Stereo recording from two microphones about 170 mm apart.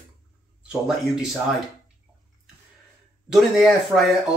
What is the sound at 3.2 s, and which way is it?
Speech, centre (ahead or behind).